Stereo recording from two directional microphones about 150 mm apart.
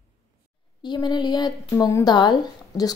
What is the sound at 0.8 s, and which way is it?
Speech, 30° left (ahead or behind).